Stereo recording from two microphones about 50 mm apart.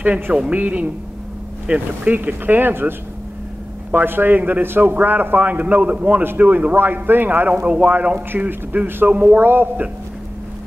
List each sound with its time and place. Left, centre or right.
0.0 s a man's voice: right
3.9 s a man's voice: right
7.6 s a man's voice: right
8.7 s a man's voice: right
9.1 s a man's voice: right
9.4 s speech: right